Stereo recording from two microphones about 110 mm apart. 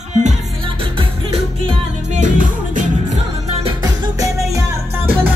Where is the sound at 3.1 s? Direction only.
70° right (ahead or behind).